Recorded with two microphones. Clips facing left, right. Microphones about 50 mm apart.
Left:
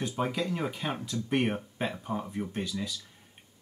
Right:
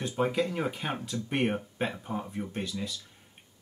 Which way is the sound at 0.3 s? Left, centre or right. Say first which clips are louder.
Right 2 dB; right.